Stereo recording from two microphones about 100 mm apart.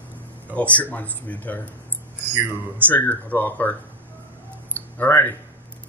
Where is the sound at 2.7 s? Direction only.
15° left (ahead or behind).